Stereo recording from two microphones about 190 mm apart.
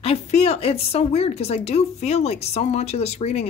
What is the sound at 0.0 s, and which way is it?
A woman's voice, 35° left (ahead or behind).